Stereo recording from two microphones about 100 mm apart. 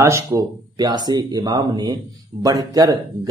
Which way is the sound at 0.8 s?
45° right (ahead or behind).